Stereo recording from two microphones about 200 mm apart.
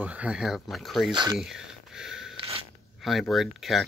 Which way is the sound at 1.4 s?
Centre (ahead or behind).